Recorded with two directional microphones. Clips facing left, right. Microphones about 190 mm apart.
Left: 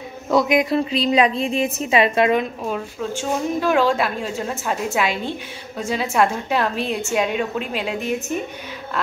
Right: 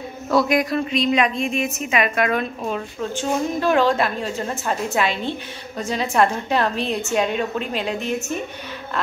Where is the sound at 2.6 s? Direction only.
5° left (ahead or behind).